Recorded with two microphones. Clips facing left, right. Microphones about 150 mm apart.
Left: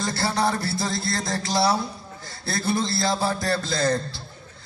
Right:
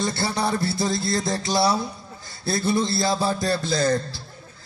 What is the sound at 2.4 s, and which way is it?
Music, 25° right (ahead or behind).